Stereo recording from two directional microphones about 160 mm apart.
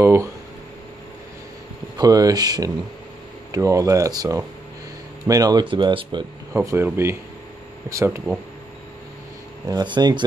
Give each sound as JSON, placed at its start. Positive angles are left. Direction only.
{"t": 0.0, "sound": "speech", "side_deg": -15}
{"t": 2.0, "sound": "speech", "side_deg": -20}
{"t": 6.5, "sound": "speech", "side_deg": -15}
{"t": 9.7, "sound": "speech", "side_deg": -25}